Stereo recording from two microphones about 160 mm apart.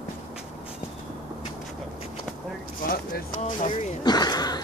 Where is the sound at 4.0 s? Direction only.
25° left (ahead or behind).